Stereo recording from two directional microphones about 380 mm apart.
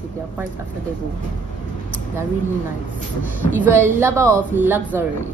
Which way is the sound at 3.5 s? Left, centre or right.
Centre.